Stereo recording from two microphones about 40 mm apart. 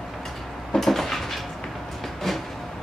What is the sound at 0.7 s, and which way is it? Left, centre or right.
Cupboard open or close, centre.